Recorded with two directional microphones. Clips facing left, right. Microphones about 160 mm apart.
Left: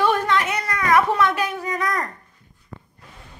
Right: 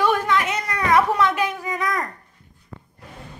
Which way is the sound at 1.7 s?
Centre (ahead or behind).